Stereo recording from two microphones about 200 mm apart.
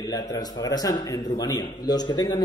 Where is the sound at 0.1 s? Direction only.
20° left (ahead or behind).